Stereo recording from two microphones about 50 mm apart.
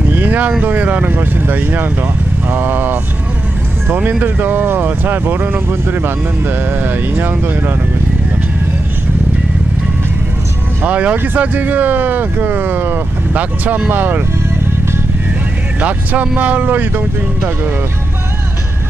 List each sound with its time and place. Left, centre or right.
0.1 s a sound: right
0.6 s speech: right
10.9 s speech: right
15.8 s speech: right